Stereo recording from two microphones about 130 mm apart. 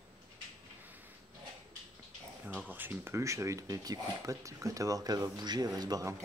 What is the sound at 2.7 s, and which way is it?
Speech, 15° right (ahead or behind).